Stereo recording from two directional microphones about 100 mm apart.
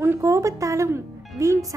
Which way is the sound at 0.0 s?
30° right (ahead or behind).